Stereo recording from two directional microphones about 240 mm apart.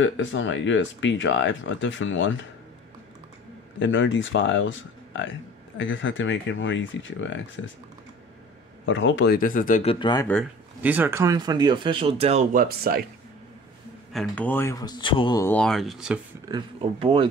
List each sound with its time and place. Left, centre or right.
0.0 s speech: left
3.8 s speech: left
8.8 s speech: left; by 10.2 s centre
10.8 s speech: centre; by 13.0 s right
14.1 s speech: centre
16.4 s speech: centre